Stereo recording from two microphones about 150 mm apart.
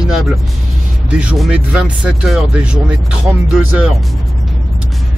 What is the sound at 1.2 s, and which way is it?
Speech, 5° right (ahead or behind).